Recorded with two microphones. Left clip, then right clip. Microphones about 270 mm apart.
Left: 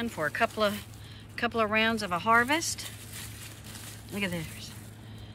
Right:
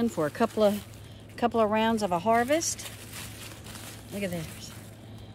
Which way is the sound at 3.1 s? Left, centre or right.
Right.